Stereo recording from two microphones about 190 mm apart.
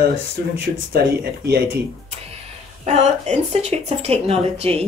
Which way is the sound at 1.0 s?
55° right (ahead or behind).